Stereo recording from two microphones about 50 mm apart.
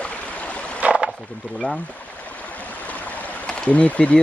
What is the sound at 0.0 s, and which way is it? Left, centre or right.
Stream, left.